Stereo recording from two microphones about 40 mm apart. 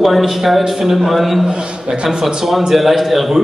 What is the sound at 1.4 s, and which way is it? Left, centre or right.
Speech, right.